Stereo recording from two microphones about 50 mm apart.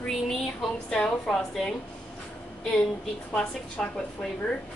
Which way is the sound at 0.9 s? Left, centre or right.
Centre.